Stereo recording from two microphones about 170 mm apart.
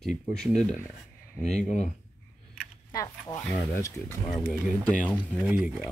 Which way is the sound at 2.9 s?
20° left (ahead or behind).